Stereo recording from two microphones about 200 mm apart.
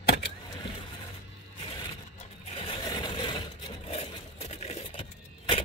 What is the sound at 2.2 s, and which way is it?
Sewing machine, 30° left (ahead or behind).